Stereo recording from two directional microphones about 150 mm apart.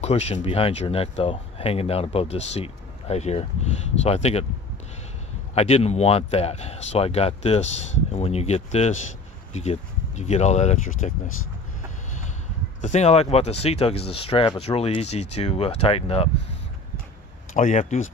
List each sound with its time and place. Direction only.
0.0 s speech: 45° left (ahead or behind)
5.5 s speech: 45° left (ahead or behind)
12.8 s speech: 50° left (ahead or behind)
17.6 s speech: 55° left (ahead or behind)